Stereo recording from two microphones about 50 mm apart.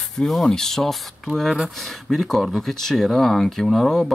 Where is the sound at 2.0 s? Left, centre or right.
Centre.